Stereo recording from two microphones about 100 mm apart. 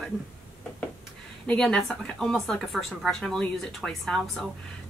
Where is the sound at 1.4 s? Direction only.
5° left (ahead or behind).